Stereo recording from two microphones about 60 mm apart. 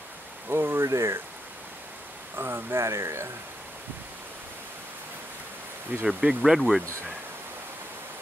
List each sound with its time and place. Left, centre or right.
0.5 s speech: right
2.3 s speech: right
6.0 s speech: centre